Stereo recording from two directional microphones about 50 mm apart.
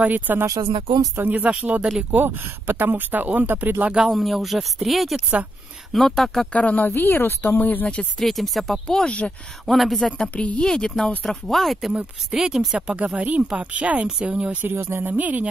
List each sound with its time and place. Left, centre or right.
0.0 s speech: right
2.1 s speech: right
4.0 s speech: centre
6.5 s speech: left
6.9 s speech: left
7.5 s speech: left
8.2 s speech: centre
8.8 s speech: centre
9.7 s speech: centre
10.3 s a woman's voice: left
10.6 s speech: centre
11.9 s speech: centre
12.7 s speech: right
14.6 s speech: right